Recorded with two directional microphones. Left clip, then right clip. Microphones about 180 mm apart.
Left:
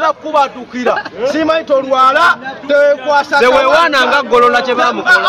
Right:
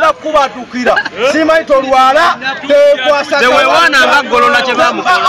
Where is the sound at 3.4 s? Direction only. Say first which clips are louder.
Even; 50° left (ahead or behind).